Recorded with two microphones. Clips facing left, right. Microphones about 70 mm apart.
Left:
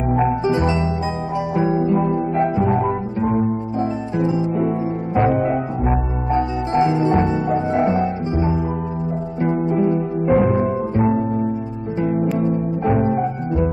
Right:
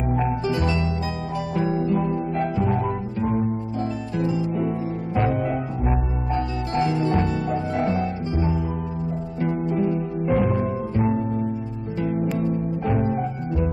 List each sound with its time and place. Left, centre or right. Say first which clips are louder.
0.5 s harp: left 5 dB; left
1.8 s harp: left 5 dB; left
2.3 s music: left 6 dB; left
4.2 s music: left 4 dB; left
10.3 s music: left 6 dB; left
12.0 s music: left 5 dB; left
12.9 s music: left 5 dB; centre